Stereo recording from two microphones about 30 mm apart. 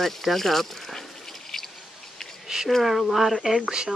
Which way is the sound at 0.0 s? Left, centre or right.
Centre.